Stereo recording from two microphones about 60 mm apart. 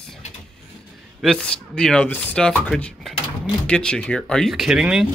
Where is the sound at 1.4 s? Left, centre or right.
Centre.